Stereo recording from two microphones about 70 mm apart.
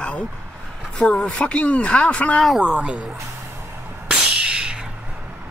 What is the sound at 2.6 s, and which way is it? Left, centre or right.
Speech, centre.